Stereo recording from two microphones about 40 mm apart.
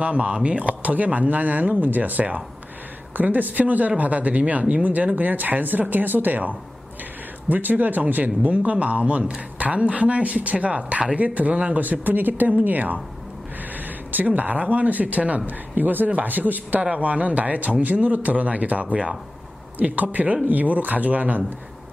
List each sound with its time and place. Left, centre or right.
0.0 s speech: right
15.7 s speech: right
16.9 s speech: right